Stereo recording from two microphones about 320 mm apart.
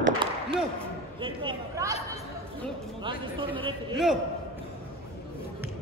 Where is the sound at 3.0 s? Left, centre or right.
Centre.